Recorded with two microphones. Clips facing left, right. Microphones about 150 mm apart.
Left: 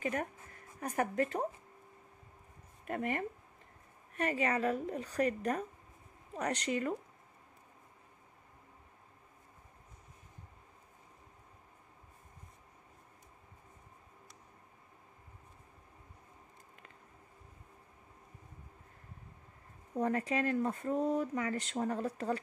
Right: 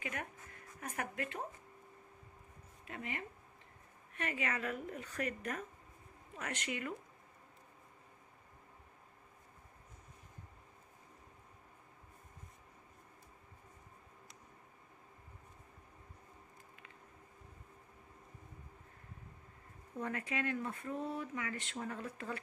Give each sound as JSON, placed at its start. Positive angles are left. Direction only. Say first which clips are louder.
{"t": 0.0, "sound": "speech", "louder": "left 8 dB", "side_deg": 40}
{"t": 2.9, "sound": "speech", "louder": "left 9 dB", "side_deg": 50}
{"t": 4.1, "sound": "speech", "louder": "left 7 dB", "side_deg": 40}
{"t": 20.0, "sound": "speech", "louder": "left 7 dB", "side_deg": 35}